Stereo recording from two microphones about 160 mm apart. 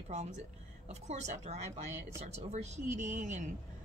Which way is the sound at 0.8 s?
45° right (ahead or behind).